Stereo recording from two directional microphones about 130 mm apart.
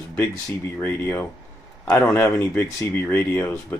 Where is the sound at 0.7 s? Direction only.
15° left (ahead or behind).